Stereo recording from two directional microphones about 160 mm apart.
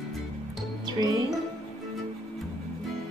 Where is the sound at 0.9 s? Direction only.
25° right (ahead or behind).